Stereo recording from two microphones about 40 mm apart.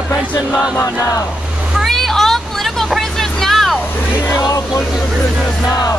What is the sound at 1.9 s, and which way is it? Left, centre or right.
Vehicle, centre.